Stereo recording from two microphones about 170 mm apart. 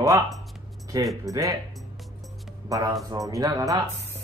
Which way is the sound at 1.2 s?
20° right (ahead or behind).